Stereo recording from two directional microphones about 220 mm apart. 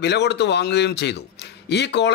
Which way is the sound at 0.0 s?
50° left (ahead or behind).